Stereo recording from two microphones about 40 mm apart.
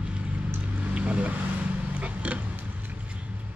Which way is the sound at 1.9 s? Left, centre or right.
Right.